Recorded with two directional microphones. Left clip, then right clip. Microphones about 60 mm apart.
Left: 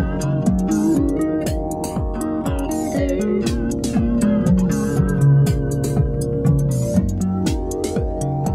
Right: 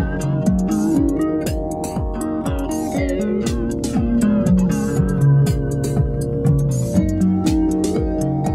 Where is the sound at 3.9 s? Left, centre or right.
Right.